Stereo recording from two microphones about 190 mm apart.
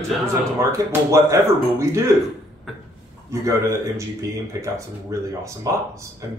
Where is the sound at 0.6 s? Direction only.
15° right (ahead or behind).